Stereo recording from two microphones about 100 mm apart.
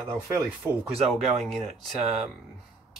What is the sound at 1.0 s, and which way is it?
Speech, 5° left (ahead or behind).